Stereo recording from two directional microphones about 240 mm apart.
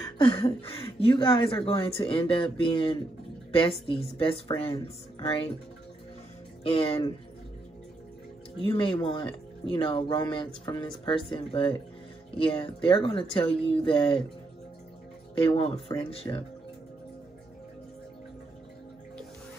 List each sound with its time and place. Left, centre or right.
0.0 s speech: left
6.6 s speech: left
8.6 s speech: centre
15.3 s speech: left